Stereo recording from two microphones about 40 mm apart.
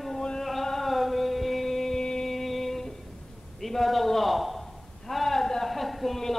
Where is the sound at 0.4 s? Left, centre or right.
Centre.